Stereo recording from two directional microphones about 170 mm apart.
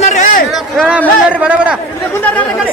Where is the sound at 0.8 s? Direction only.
5° right (ahead or behind).